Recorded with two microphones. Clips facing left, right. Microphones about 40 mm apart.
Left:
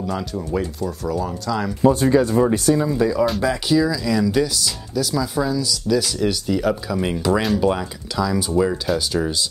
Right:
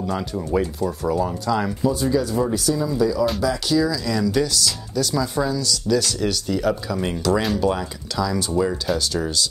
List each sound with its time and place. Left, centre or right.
0.0 s speech: centre
1.8 s speech: left
3.6 s speech: centre